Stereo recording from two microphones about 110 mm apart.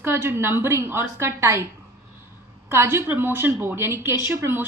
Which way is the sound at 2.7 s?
25° right (ahead or behind).